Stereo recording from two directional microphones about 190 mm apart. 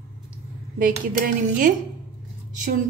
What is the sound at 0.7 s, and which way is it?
A woman's voice, 45° right (ahead or behind).